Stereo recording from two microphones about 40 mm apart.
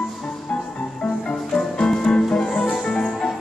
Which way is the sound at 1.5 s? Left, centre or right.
Centre.